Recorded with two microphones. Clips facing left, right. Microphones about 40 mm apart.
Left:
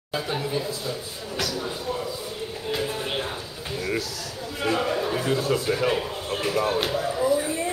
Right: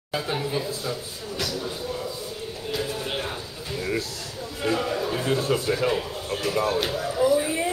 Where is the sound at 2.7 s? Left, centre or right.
Centre.